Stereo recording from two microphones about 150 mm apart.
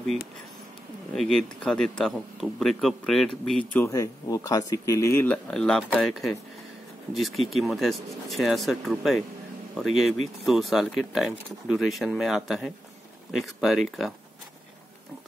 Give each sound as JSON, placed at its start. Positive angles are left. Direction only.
{"t": 1.1, "sound": "speech", "side_deg": 5}
{"t": 3.8, "sound": "speech", "side_deg": 20}